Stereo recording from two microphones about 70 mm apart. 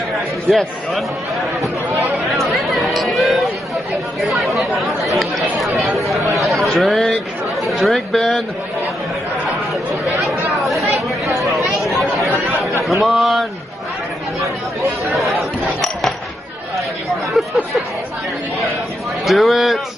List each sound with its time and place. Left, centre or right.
0.5 s speech: centre
2.4 s a sound: centre
4.2 s speech: centre
10.6 s chatter: centre
12.8 s speech: centre
14.4 s speech: right
15.6 s a sound: centre
17.3 s speech: centre
19.2 s speech: centre